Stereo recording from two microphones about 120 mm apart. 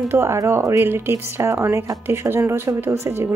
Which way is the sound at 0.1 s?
20° right (ahead or behind).